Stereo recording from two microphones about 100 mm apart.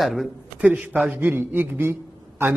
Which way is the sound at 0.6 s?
15° right (ahead or behind).